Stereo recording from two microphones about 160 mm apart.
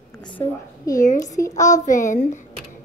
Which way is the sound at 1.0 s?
50° left (ahead or behind).